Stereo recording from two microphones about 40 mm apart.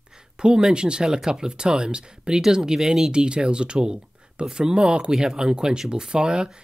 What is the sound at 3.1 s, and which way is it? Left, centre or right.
Speech, right.